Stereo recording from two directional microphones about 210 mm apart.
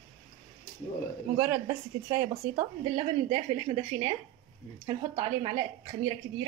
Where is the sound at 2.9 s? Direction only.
25° right (ahead or behind).